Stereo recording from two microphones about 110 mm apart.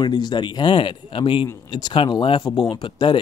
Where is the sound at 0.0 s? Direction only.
40° left (ahead or behind).